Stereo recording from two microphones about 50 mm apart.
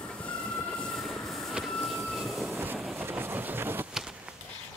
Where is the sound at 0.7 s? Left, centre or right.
Centre.